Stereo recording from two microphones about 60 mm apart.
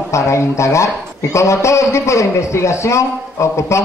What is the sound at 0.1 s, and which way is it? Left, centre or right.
A man's voice, left.